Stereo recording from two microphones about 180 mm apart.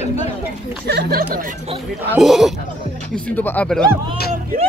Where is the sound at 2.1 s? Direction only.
Centre (ahead or behind).